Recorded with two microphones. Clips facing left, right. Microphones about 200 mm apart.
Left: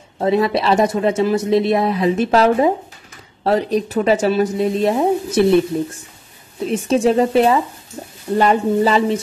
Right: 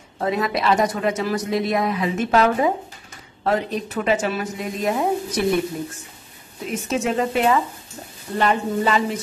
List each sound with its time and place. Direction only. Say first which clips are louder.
0.2 s a woman's voice: left 6 dB; 30° left (ahead or behind)
6.7 s speech: left 8 dB; 30° left (ahead or behind)